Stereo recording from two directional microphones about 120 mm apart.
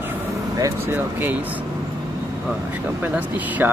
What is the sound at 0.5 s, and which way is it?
Speech, 25° right (ahead or behind).